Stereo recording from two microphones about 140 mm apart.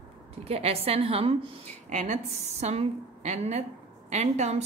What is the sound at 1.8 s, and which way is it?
A woman's voice, 60° right (ahead or behind).